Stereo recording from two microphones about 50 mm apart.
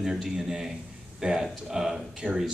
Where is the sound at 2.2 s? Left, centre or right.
Right.